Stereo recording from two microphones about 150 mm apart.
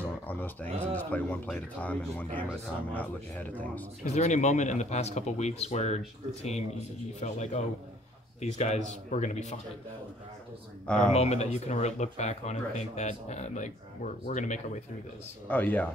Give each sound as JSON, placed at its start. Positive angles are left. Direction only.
{"t": 0.0, "sound": "speech", "side_deg": 10}
{"t": 4.1, "sound": "speech", "side_deg": 50}
{"t": 10.9, "sound": "speech", "side_deg": 5}
{"t": 11.1, "sound": "speech", "side_deg": 50}
{"t": 15.4, "sound": "speech", "side_deg": 10}